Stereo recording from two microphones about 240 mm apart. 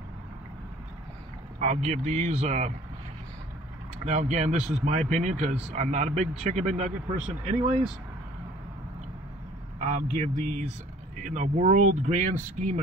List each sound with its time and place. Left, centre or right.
1.6 s speech: right
4.0 s speech: right
9.8 s speech: right